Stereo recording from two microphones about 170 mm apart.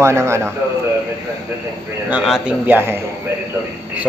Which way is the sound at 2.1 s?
5° right (ahead or behind).